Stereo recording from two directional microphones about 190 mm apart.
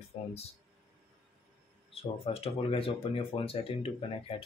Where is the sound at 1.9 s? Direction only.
30° left (ahead or behind).